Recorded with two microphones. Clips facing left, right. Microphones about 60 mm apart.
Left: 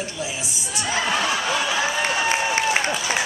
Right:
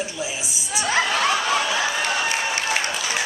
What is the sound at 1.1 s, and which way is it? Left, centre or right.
Snicker, right.